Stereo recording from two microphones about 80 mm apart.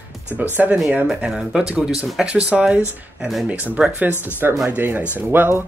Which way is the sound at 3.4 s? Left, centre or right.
Centre.